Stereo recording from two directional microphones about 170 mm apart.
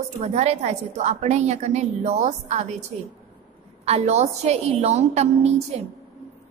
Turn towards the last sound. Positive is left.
turn(degrees=-40)  # may be behind; listen again after turning